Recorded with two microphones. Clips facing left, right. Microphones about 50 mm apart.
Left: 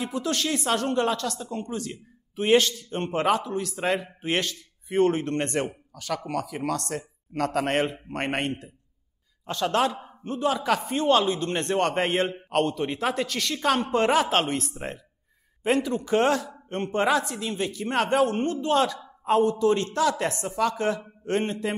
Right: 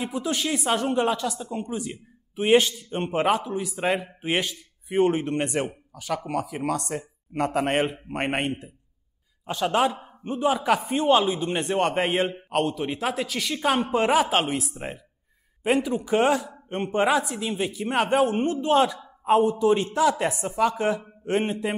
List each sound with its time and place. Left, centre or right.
0.0 s speech: centre